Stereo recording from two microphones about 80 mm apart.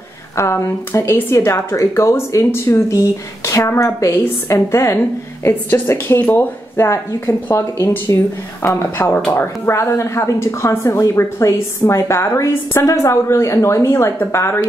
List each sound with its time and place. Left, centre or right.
0.4 s speech: left
8.6 s speech: left
9.8 s speech: left